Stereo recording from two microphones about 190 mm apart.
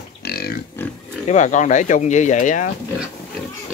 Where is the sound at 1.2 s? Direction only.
40° left (ahead or behind).